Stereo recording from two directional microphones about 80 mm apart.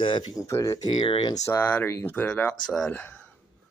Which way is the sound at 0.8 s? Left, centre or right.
Left.